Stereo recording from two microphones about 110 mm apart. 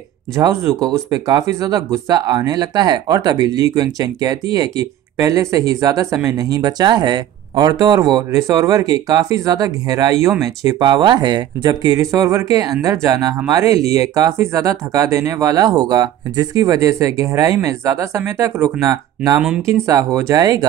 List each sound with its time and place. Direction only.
0.4 s speech: 25° right (ahead or behind)